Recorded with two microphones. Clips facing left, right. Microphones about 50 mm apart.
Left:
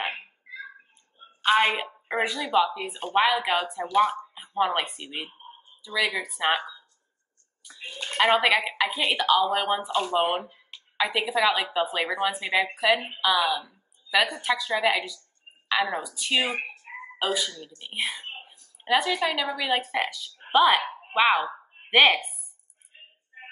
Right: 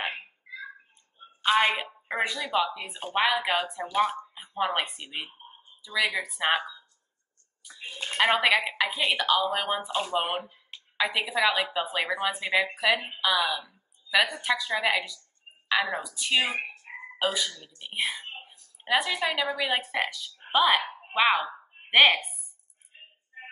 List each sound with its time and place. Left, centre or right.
1.4 s a woman's voice: centre
7.8 s a sound: centre
8.2 s a woman's voice: centre
18.4 s a sound: centre
19.5 s a woman's voice: centre
19.8 s a woman's voice: centre